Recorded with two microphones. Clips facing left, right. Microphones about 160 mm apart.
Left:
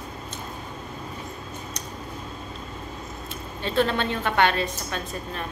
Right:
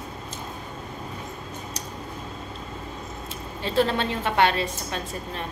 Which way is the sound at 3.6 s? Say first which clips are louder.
Even; 30° right (ahead or behind).